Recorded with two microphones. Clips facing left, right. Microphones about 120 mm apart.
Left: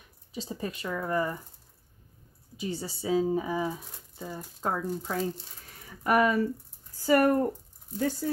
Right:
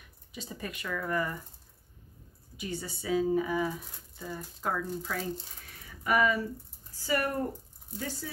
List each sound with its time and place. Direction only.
0.3 s speech: 30° left (ahead or behind)
2.5 s speech: 30° left (ahead or behind)
6.0 s speech: 45° left (ahead or behind)